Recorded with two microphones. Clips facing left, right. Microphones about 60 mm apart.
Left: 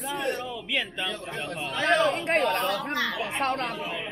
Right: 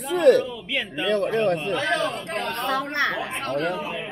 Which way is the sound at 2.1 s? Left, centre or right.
Left.